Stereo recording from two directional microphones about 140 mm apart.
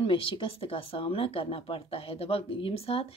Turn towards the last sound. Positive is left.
turn(degrees=45)  # may be behind; listen again after turning